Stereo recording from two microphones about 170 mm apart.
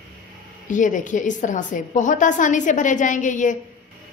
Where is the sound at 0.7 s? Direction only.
50° left (ahead or behind).